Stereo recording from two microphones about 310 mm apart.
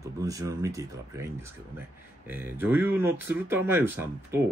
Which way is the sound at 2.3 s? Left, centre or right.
Centre.